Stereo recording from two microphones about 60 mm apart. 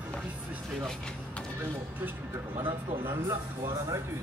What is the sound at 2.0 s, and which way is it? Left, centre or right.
Speech, right.